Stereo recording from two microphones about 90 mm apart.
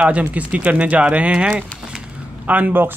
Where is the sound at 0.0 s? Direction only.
15° right (ahead or behind).